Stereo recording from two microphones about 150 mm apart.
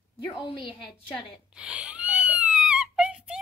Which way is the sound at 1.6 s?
5° right (ahead or behind).